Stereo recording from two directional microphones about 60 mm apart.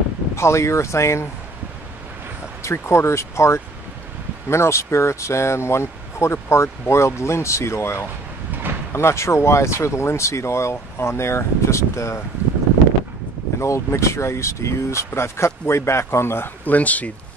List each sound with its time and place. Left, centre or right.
0.4 s speech: left
2.6 s speech: left
13.6 s speech: left
16.6 s speech: left